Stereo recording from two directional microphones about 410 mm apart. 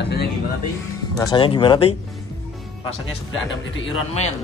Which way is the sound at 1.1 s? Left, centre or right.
Centre.